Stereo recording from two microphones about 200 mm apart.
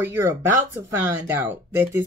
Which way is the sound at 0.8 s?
10° right (ahead or behind).